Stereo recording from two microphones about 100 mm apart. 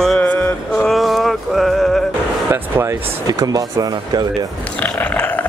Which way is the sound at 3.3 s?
40° right (ahead or behind).